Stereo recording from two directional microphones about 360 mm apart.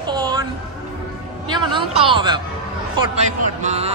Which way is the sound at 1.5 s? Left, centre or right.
Centre.